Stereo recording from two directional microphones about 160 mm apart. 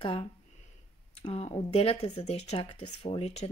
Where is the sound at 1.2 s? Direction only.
40° left (ahead or behind).